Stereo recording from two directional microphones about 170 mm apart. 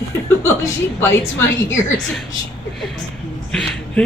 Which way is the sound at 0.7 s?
15° left (ahead or behind).